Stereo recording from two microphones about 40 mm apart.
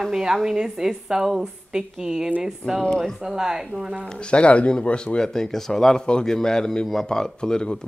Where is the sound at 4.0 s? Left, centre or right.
Left.